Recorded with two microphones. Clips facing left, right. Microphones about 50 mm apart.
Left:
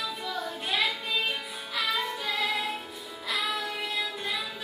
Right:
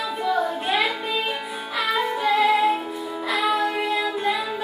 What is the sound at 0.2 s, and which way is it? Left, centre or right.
Child singing, right.